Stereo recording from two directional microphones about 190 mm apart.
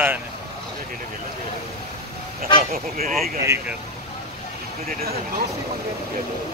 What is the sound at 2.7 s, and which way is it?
Speech, 50° right (ahead or behind).